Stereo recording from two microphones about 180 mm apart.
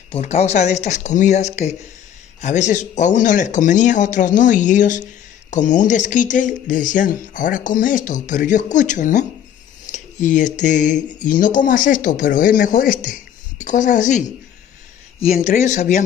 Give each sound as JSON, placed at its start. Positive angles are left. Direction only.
{"t": 0.1, "sound": "speech", "side_deg": 35}
{"t": 15.3, "sound": "speech", "side_deg": 45}